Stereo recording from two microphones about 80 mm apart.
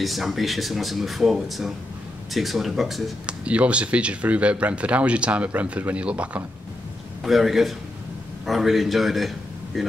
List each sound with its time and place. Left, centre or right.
0.0 s speech: centre
3.3 s speech: centre
7.2 s speech: centre